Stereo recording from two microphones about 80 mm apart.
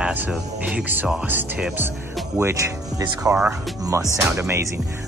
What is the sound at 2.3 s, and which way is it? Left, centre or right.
Speech, right.